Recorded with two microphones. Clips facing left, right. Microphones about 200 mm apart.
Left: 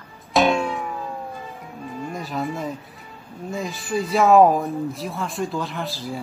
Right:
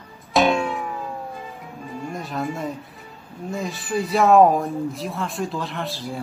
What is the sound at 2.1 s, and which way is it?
Speech, centre (ahead or behind).